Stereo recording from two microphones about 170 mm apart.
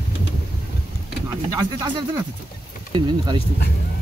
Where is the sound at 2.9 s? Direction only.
25° right (ahead or behind).